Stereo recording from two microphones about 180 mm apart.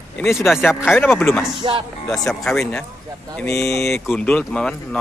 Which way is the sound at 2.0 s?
5° left (ahead or behind).